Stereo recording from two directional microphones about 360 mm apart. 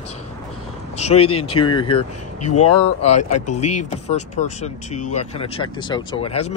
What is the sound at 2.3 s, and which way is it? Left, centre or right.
Speech, left.